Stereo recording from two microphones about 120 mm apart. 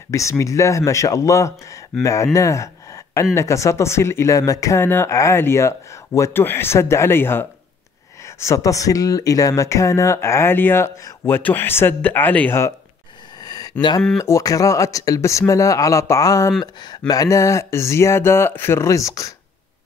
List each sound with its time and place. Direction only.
0.1 s speech: 25° left (ahead or behind)
2.3 s gasp: 25° left (ahead or behind)
3.3 s speech: 25° left (ahead or behind)
13.4 s a sound: 35° left (ahead or behind)
14.1 s speech: 25° left (ahead or behind)